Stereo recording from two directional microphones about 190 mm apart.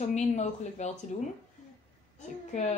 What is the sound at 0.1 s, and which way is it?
Speech, 35° left (ahead or behind).